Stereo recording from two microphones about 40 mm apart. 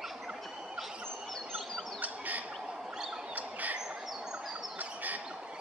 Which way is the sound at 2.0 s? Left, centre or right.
Right.